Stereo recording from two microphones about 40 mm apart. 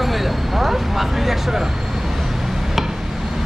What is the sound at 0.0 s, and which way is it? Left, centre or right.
Vehicle, centre.